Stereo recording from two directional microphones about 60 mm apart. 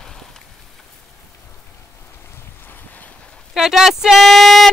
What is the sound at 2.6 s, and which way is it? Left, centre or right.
Boat, left.